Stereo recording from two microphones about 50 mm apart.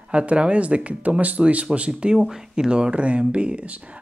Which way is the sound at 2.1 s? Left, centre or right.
Centre.